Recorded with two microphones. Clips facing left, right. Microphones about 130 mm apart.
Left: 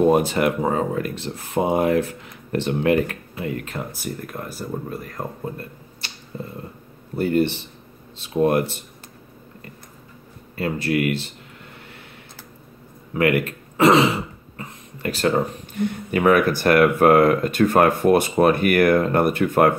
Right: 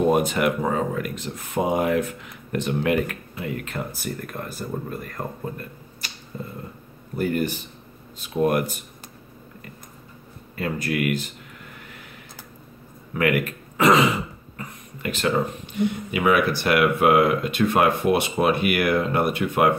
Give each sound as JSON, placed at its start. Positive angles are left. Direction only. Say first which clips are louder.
{"t": 0.1, "sound": "speech", "louder": "left 2 dB", "side_deg": 30}
{"t": 4.0, "sound": "speech", "louder": "left 1 dB", "side_deg": 5}
{"t": 5.4, "sound": "a sound", "louder": "left 2 dB", "side_deg": 30}
{"t": 6.3, "sound": "speech", "louder": "left 2 dB", "side_deg": 30}
{"t": 10.5, "sound": "speech", "louder": "left 4 dB", "side_deg": 30}
{"t": 13.2, "sound": "speech", "louder": "left 3 dB", "side_deg": 30}